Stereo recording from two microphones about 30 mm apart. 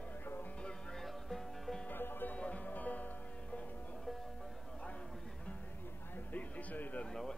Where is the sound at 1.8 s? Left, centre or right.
Left.